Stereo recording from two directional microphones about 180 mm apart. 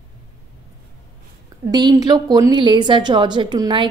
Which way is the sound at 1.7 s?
20° right (ahead or behind).